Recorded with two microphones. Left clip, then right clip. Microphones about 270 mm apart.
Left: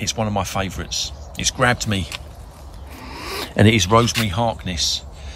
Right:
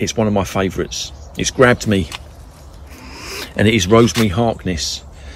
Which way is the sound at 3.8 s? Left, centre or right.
Centre.